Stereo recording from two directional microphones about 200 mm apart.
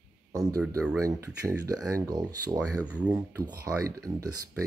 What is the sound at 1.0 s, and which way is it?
Speech, 15° right (ahead or behind).